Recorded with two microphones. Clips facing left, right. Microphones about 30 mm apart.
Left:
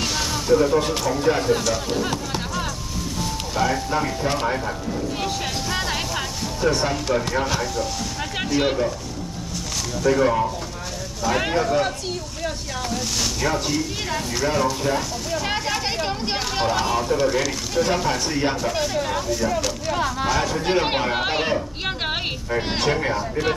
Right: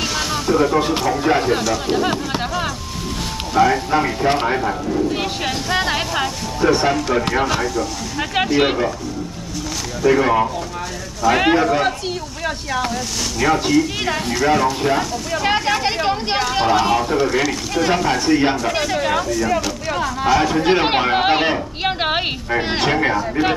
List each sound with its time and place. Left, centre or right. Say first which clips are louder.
0.0 s a sound: right 3 dB; centre
0.3 s speech: right 1 dB; right
5.7 s music: right 7 dB; right
7.2 s speech: right 5 dB; right
10.2 s speech: right 3 dB; right
13.5 s speech: right 7 dB; right
16.8 s speech: right 4 dB; right
17.2 s speech: right 3 dB; centre
20.2 s speech: right 10 dB; right